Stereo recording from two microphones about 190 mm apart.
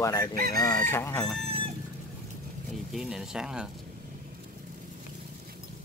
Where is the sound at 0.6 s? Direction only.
20° left (ahead or behind).